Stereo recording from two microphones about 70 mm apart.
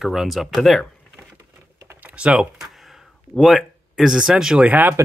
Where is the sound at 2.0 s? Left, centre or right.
Right.